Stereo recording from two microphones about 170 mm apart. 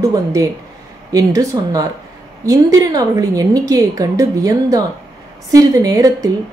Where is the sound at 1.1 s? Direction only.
20° right (ahead or behind).